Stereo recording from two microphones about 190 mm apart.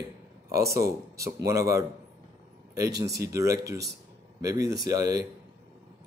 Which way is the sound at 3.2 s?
15° right (ahead or behind).